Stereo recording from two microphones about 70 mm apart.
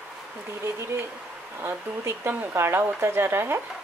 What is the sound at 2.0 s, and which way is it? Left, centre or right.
Speech, right.